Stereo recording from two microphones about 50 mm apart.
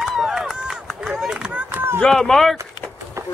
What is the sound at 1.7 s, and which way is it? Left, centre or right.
Run, right.